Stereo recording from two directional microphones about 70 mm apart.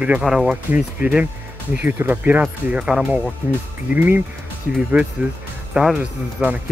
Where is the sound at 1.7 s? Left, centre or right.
Right.